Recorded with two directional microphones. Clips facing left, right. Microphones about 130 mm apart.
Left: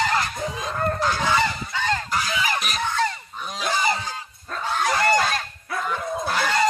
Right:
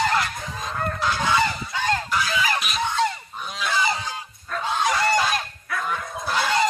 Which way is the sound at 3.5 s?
45° left (ahead or behind).